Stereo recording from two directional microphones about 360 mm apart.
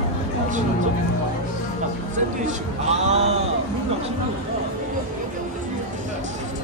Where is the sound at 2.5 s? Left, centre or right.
Centre.